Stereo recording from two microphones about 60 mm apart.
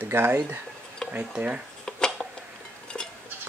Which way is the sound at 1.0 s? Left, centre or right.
Centre.